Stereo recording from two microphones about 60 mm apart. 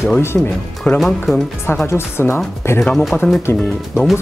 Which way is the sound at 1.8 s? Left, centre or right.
Left.